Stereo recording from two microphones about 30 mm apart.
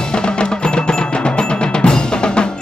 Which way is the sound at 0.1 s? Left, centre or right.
Left.